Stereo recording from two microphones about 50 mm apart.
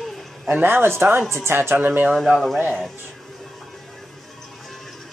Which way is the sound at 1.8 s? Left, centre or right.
Right.